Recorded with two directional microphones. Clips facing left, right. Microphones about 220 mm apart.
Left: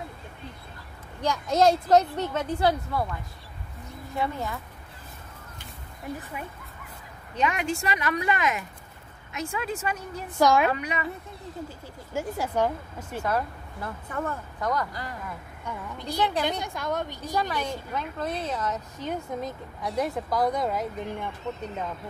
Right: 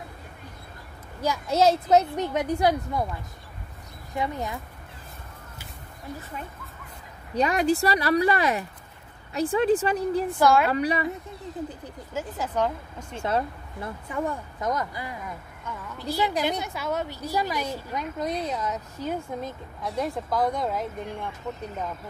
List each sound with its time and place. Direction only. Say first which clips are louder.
1.2 s a woman's voice: even; 5° right (ahead or behind)
7.3 s speech: right 5 dB; 35° right (ahead or behind)
10.4 s speech: even; 15° left (ahead or behind)
10.7 s speech: right 5 dB; 35° right (ahead or behind)
12.1 s speech: left 2 dB; 10° left (ahead or behind)
13.2 s speech: right 2 dB; 25° right (ahead or behind)
14.0 s a woman's voice: right 3 dB; 15° right (ahead or behind)